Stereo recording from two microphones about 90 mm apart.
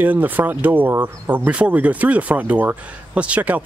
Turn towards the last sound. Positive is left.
turn(degrees=-15)  # may be behind; listen again after turning